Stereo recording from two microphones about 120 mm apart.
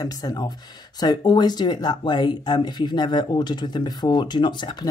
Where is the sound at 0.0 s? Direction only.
30° left (ahead or behind).